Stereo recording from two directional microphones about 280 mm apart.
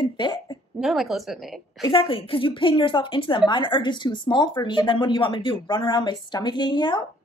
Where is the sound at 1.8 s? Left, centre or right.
Centre.